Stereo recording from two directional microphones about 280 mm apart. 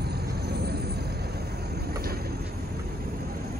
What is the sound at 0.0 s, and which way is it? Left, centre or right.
Vehicle, right.